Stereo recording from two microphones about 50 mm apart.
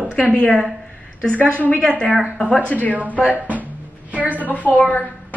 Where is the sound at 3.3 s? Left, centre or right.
Right.